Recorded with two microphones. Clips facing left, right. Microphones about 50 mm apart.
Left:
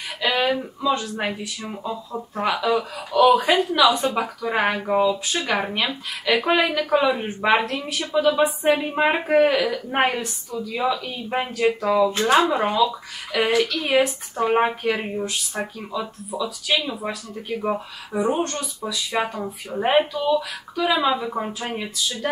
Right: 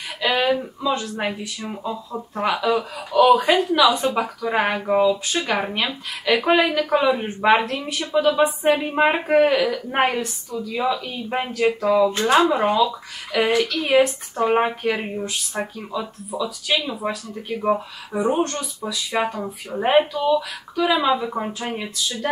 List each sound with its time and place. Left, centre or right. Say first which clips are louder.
0.2 s speech: right 1 dB; centre